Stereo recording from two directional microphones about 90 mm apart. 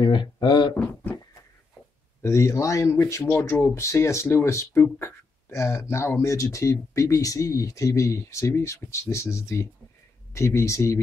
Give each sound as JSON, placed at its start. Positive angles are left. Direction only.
{"t": 0.0, "sound": "speech", "side_deg": 60}
{"t": 2.2, "sound": "speech", "side_deg": 35}